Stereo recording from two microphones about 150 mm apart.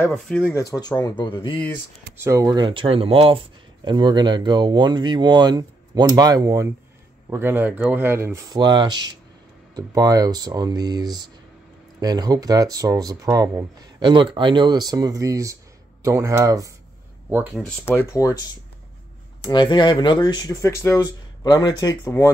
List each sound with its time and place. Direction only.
0.5 s speech: 20° left (ahead or behind)
2.1 s speech: 20° right (ahead or behind)
8.5 s speech: 30° right (ahead or behind)
17.3 s speech: 5° right (ahead or behind)
17.8 s speech: 20° left (ahead or behind)
19.4 s speech: 30° left (ahead or behind)